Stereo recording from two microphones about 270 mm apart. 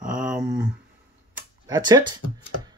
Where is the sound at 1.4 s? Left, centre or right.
Centre.